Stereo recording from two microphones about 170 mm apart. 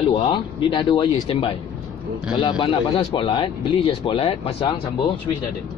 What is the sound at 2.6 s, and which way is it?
Speech, 30° left (ahead or behind).